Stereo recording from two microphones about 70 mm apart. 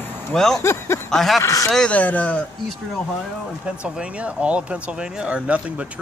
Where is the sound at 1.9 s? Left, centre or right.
Left.